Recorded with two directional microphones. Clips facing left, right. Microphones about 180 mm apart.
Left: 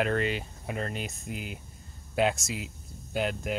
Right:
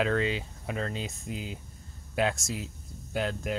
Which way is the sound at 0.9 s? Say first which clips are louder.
Even; 65° left (ahead or behind).